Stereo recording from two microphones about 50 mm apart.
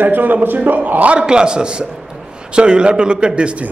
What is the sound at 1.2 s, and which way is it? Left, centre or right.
A man's voice, centre.